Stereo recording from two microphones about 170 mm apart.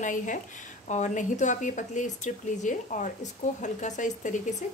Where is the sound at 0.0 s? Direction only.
50° left (ahead or behind).